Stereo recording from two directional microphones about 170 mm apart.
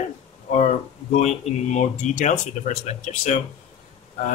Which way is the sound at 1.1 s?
40° left (ahead or behind).